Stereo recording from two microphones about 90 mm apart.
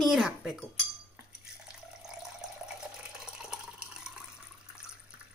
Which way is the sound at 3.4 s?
10° right (ahead or behind).